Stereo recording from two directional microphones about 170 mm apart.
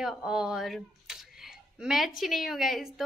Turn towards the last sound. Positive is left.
turn(degrees=0)  # may be behind; listen again after turning